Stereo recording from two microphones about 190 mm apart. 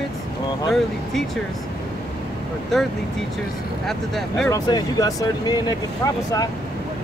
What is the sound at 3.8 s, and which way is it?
Speech, centre (ahead or behind).